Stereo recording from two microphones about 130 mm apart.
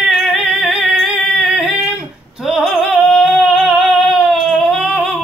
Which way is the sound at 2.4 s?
Centre (ahead or behind).